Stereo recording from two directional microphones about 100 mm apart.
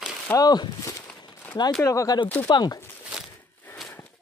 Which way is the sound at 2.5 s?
40° left (ahead or behind).